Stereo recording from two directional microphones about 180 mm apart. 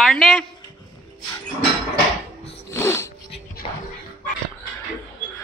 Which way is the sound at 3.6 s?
40° left (ahead or behind).